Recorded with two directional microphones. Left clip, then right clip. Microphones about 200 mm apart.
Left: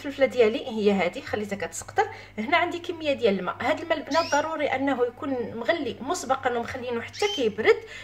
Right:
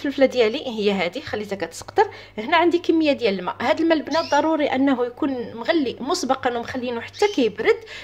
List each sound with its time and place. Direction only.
0.0 s a woman's voice: 40° right (ahead or behind)